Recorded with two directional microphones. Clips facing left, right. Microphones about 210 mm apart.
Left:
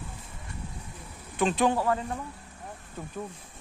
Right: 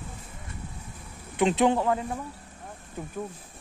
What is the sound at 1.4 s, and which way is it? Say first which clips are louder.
Speech: right 3 dB; 20° right (ahead or behind).